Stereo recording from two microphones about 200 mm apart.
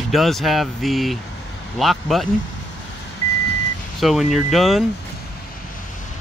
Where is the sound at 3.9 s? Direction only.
Centre (ahead or behind).